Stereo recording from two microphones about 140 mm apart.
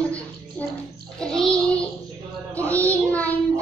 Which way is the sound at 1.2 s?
5° left (ahead or behind).